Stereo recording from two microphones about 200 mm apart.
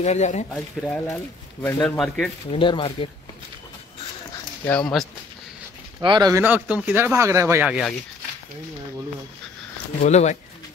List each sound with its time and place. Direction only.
0.0 s speech: 35° left (ahead or behind)
0.5 s a man's voice: 5° left (ahead or behind)
2.5 s speech: 25° left (ahead or behind)
4.6 s a man's voice: 5° left (ahead or behind)
5.9 s speech: 20° right (ahead or behind)
6.4 s speech: 5° right (ahead or behind)
10.0 s speech: 35° left (ahead or behind)